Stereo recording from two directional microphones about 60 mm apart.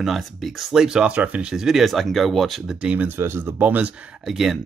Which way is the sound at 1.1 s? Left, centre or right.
Right.